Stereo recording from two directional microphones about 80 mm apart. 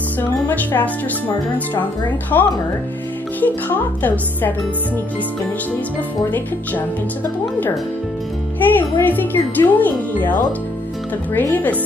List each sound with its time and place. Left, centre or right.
0.2 s music: left
2.3 s speech: left
8.6 s speech: left
11.3 s speech: centre